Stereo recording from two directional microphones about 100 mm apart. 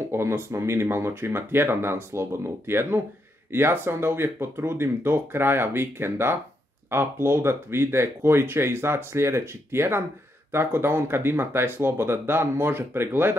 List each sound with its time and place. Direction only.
0.1 s speech: 25° right (ahead or behind)